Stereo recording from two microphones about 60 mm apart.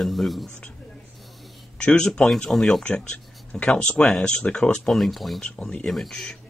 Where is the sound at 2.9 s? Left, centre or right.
Centre.